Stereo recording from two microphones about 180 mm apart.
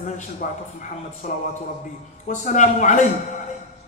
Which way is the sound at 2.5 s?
45° left (ahead or behind).